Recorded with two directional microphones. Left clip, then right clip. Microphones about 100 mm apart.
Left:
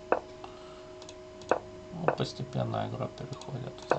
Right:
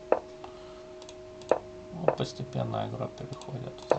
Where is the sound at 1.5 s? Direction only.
55° left (ahead or behind).